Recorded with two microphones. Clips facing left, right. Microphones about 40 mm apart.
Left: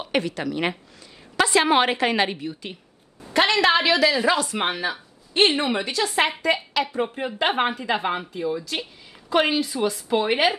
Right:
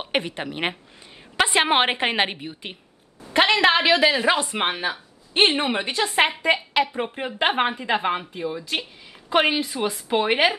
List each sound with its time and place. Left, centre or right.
0.0 s a woman's voice: right